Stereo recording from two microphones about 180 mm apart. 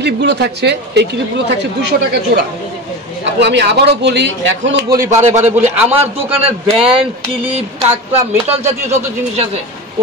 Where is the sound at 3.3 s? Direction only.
70° right (ahead or behind).